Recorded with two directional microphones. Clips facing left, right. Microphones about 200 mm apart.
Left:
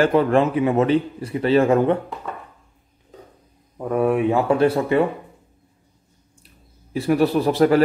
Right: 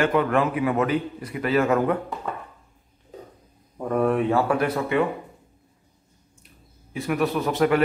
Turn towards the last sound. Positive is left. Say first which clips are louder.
# left 5 dB
turn(degrees=35)  # may be behind; listen again after turning